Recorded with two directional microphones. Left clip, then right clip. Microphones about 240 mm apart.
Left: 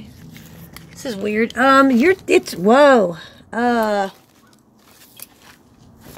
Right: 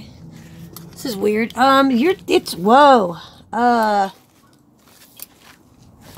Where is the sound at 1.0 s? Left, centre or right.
Right.